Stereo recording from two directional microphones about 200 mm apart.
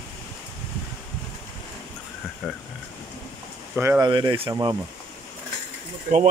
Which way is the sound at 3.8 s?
15° right (ahead or behind).